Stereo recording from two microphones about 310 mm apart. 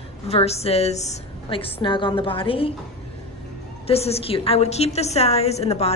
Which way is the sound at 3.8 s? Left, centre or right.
Centre.